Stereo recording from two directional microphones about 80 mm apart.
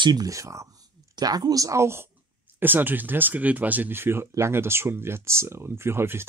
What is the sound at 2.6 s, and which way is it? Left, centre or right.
Speech, right.